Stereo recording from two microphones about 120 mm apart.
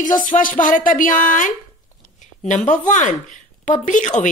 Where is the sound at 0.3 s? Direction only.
90° left.